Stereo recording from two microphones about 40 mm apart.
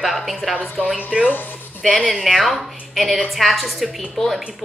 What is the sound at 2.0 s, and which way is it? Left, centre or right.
A woman's voice, centre.